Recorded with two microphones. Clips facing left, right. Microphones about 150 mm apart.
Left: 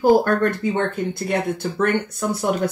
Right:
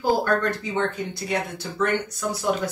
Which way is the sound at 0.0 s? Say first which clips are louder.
Left 6 dB; 55° left (ahead or behind).